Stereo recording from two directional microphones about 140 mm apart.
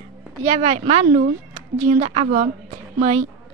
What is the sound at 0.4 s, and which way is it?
A woman's voice, 50° right (ahead or behind).